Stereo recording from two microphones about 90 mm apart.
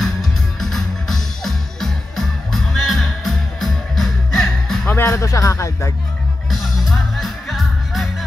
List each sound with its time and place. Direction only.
0.0 s music: centre (ahead or behind)
4.8 s speech: 25° left (ahead or behind)
6.5 s music: centre (ahead or behind)